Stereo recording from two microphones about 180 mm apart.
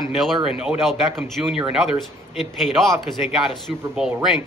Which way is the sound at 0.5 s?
5° right (ahead or behind).